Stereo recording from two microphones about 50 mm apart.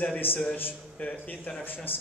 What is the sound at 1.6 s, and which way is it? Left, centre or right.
Speech, left.